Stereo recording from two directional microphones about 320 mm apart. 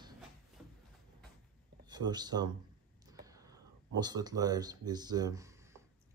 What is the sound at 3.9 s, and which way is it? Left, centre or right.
Speech, centre.